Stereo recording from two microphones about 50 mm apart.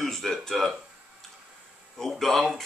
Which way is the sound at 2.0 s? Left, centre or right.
Centre.